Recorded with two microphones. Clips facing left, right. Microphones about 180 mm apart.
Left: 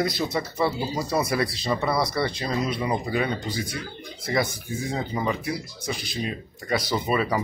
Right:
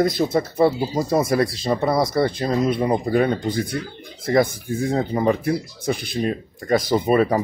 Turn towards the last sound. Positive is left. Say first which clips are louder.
# right 7 dB
turn(degrees=-45)  # may be behind; listen again after turning